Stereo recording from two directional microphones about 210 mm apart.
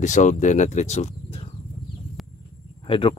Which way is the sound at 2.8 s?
25° left (ahead or behind).